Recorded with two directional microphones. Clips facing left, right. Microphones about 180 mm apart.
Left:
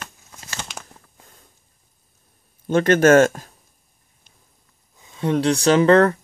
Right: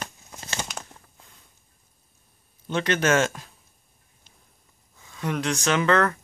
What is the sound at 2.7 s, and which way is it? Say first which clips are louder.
Speech: left 9 dB; 50° left (ahead or behind).